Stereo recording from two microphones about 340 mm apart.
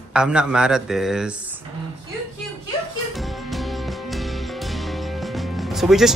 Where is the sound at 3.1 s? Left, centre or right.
Centre.